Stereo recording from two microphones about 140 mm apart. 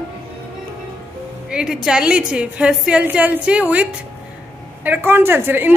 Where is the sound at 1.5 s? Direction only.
5° right (ahead or behind).